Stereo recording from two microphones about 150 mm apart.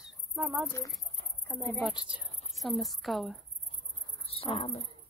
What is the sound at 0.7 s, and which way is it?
A woman's voice, 20° left (ahead or behind).